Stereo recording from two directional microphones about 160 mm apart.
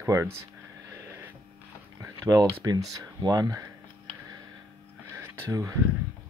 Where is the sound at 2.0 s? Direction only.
20° right (ahead or behind).